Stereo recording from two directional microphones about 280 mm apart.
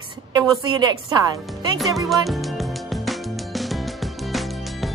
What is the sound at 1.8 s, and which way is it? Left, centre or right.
Music, centre.